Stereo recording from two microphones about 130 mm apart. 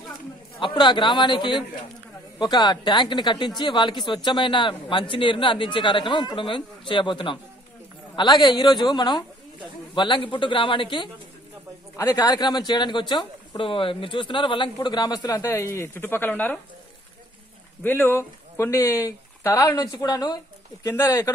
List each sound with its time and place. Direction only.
0.6 s speech: 40° left (ahead or behind); by 16.5 s 15° left (ahead or behind)
17.8 s speech: 15° left (ahead or behind)